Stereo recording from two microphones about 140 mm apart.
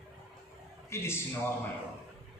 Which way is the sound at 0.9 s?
20° left (ahead or behind).